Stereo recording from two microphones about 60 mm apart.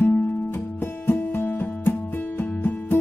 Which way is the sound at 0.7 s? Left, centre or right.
Left.